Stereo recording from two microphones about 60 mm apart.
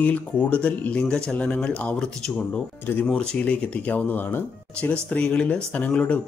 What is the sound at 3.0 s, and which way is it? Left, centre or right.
Speech, centre.